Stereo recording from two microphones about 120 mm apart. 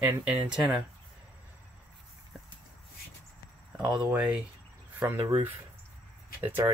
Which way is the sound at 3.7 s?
5° right (ahead or behind).